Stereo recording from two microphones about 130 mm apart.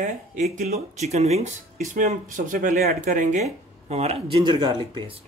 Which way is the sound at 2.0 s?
90° right.